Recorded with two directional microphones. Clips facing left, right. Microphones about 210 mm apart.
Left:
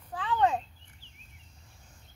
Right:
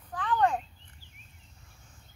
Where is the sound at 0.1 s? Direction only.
10° left (ahead or behind).